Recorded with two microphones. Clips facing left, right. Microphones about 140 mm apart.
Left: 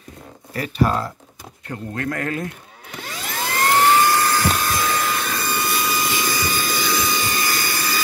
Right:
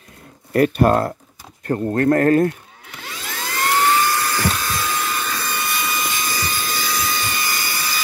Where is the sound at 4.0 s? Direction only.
30° left (ahead or behind).